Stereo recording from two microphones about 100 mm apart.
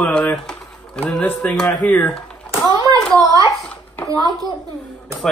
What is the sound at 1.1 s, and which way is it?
Speech, 15° left (ahead or behind).